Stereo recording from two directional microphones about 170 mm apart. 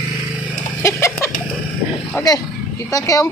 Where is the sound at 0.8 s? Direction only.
15° left (ahead or behind).